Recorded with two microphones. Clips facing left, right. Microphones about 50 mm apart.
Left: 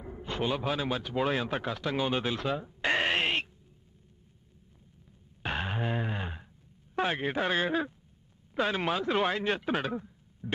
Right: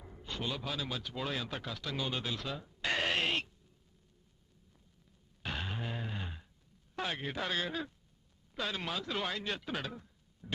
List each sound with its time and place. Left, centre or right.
0.0 s speech: left
5.4 s a sound: left
7.0 s speech: left